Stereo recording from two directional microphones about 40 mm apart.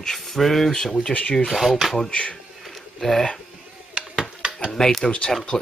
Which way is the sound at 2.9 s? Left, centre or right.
Centre.